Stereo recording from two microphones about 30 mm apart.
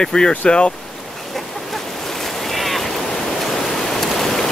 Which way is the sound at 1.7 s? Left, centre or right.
Centre.